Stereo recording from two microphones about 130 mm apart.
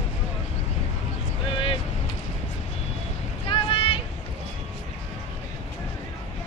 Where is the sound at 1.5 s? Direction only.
40° left (ahead or behind).